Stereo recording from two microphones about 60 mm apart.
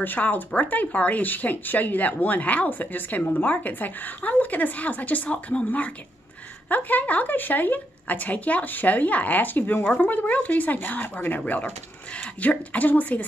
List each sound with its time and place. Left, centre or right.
0.0 s speech: left